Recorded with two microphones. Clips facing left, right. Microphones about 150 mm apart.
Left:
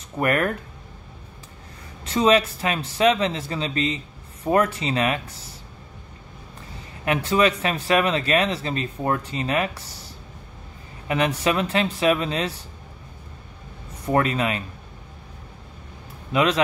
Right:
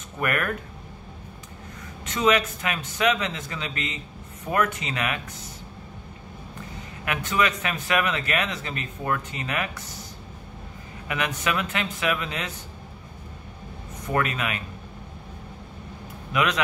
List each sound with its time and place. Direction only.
0.2 s speech: 30° left (ahead or behind)
2.0 s speech: 30° left (ahead or behind)
7.1 s speech: 30° left (ahead or behind)
11.1 s speech: 30° left (ahead or behind)
14.0 s speech: 30° left (ahead or behind)
16.3 s speech: 30° left (ahead or behind)